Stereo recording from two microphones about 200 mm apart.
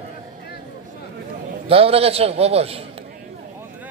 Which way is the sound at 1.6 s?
30° right (ahead or behind).